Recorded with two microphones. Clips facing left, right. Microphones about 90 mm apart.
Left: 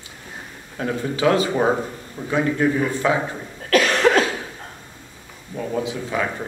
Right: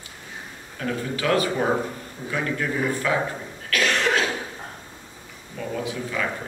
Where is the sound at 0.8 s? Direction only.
20° left (ahead or behind).